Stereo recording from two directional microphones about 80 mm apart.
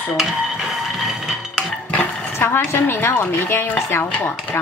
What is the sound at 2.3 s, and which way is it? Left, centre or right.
Speech, left.